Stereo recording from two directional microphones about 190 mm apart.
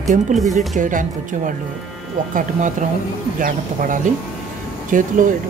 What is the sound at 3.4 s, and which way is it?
Speech, 45° right (ahead or behind).